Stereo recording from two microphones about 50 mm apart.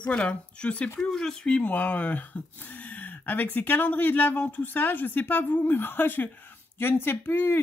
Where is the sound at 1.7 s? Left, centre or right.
Left.